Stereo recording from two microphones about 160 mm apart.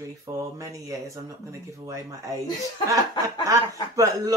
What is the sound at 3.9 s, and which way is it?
Speech, 20° right (ahead or behind).